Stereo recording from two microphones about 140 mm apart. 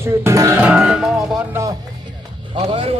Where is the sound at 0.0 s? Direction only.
20° right (ahead or behind).